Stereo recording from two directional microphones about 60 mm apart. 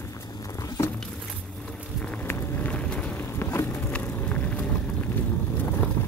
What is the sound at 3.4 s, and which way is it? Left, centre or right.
Vehicle, left.